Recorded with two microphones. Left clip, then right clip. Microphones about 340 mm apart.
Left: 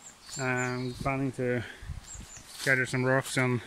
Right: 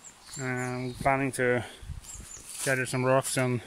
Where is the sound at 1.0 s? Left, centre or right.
Right.